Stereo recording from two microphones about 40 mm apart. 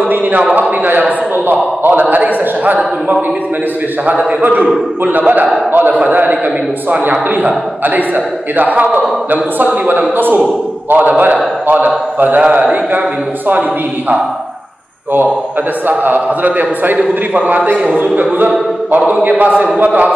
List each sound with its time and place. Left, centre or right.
0.1 s a man's voice: right
0.8 s a man's voice: right
4.4 s a man's voice: right
5.7 s a man's voice: right
9.8 s a man's voice: right
12.4 s a man's voice: right
16.0 s a man's voice: right
18.9 s a man's voice: right
19.2 s a man's voice: right